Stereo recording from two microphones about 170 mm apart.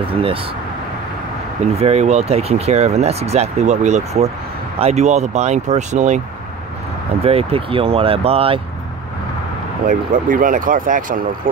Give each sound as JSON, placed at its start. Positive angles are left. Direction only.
{"t": 1.8, "sound": "speech", "side_deg": -40}
{"t": 7.2, "sound": "speech", "side_deg": -35}
{"t": 9.8, "sound": "speech", "side_deg": -50}